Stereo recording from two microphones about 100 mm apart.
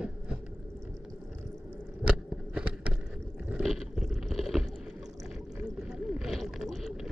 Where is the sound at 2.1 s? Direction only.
10° right (ahead or behind).